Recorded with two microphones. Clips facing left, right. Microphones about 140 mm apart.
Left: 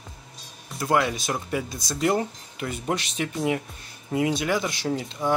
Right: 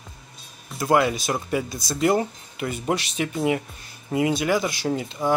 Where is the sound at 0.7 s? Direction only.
5° right (ahead or behind).